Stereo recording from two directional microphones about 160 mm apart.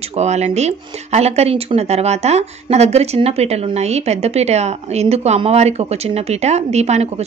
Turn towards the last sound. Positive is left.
turn(degrees=-45)  # may be behind; listen again after turning